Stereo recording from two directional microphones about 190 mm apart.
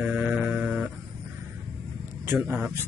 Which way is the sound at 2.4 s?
10° right (ahead or behind).